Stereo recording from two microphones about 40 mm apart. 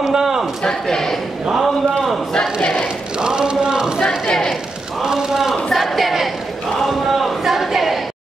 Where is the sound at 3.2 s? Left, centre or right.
Centre.